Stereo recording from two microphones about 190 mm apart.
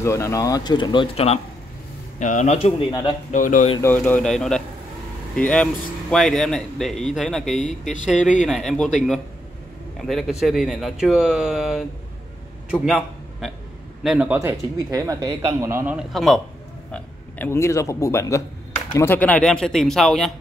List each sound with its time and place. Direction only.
0.0 s a man's voice: 15° left (ahead or behind)
3.3 s speech: 45° left (ahead or behind)
3.8 s speech: 10° left (ahead or behind)
8.2 s a man's voice: 40° left (ahead or behind)
8.5 s a man's voice: centre (ahead or behind)
16.9 s speech: 10° left (ahead or behind)